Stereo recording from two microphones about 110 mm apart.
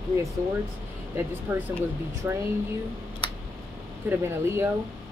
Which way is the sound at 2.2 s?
20° right (ahead or behind).